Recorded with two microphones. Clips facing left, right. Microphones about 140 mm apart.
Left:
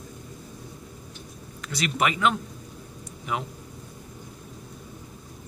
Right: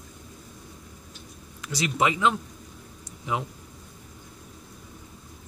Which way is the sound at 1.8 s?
20° right (ahead or behind).